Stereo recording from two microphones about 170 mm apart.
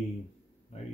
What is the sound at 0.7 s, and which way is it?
Speech, 40° left (ahead or behind).